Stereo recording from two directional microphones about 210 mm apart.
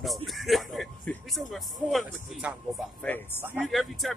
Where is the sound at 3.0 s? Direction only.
10° left (ahead or behind).